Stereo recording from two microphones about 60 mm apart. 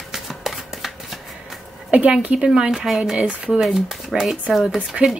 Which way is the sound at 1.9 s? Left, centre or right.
Right.